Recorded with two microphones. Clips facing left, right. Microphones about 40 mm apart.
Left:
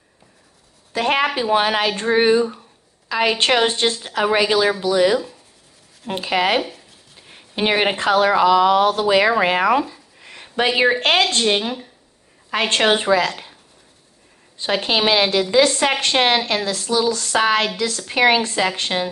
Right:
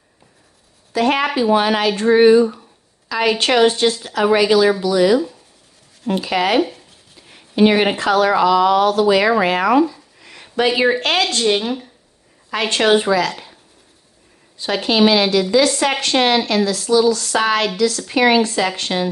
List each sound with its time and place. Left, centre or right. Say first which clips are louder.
0.9 s a woman's voice: right 2 dB; left
1.2 s speech: right 2 dB; left
1.5 s a woman's voice: right 3 dB; left
11.4 s speech: right 2 dB; left
14.6 s a woman's voice: right 4 dB; left